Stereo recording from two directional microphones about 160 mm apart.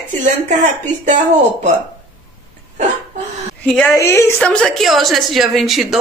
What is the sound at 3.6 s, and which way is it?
Speech, 5° left (ahead or behind).